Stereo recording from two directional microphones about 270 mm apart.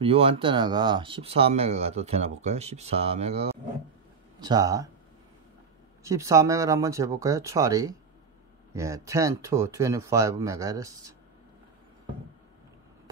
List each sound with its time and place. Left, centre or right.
0.0 s speech: centre
6.0 s speech: centre